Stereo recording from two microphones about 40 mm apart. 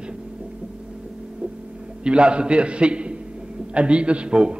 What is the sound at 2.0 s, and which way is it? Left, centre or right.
A man's voice, right.